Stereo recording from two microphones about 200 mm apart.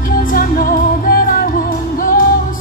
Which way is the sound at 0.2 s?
45° left (ahead or behind).